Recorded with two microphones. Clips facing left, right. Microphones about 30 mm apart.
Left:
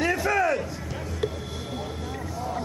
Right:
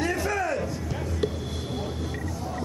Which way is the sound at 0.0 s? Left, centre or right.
Centre.